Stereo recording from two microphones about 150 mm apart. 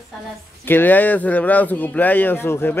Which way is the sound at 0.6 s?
15° left (ahead or behind).